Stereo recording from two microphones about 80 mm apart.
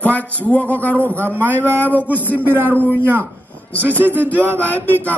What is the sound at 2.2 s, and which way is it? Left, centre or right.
Speech, right.